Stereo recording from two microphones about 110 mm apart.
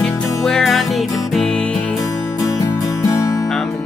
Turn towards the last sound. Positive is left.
turn(degrees=30)  # may be behind; listen again after turning